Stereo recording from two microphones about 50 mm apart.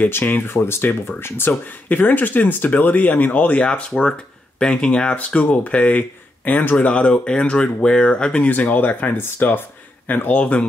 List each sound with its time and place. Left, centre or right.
0.1 s speech: left
3.6 s speech: centre
8.5 s speech: left
10.4 s speech: left